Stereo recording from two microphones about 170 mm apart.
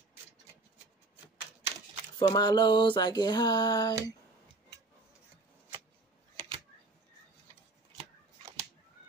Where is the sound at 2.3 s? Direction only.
25° left (ahead or behind).